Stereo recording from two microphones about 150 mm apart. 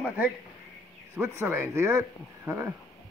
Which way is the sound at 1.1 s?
15° right (ahead or behind).